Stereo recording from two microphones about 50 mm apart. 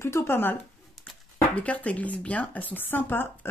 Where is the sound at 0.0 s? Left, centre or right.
Left.